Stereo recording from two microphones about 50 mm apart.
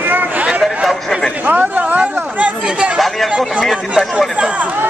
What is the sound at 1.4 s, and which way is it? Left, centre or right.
Speech, right.